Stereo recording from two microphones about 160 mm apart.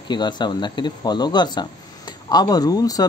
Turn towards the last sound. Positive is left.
turn(degrees=25)  # may be behind; listen again after turning